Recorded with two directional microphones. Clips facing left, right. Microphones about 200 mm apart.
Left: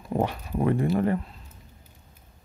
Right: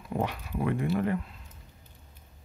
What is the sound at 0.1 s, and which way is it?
Speech, 30° left (ahead or behind).